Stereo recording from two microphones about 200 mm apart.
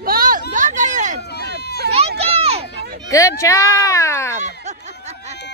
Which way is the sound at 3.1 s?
15° left (ahead or behind).